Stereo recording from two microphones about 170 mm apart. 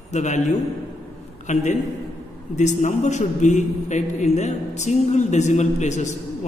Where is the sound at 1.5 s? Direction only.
45° left (ahead or behind).